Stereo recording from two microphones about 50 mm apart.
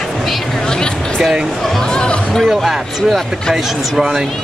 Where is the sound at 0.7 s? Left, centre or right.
Centre.